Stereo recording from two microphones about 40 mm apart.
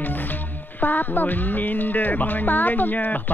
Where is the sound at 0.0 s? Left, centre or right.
Left.